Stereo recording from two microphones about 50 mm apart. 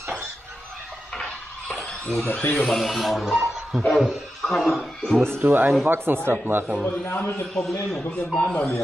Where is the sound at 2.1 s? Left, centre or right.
Left.